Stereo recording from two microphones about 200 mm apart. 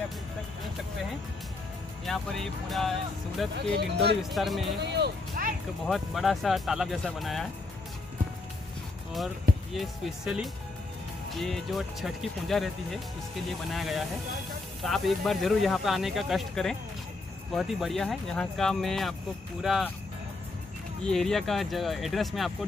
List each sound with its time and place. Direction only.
2.0 s speech: centre (ahead or behind)
3.7 s speech: 55° right (ahead or behind)
4.2 s speech: centre (ahead or behind)
4.8 s speech: 55° right (ahead or behind)
5.9 s speech: centre (ahead or behind)
9.8 s speech: centre (ahead or behind)
21.0 s speech: centre (ahead or behind)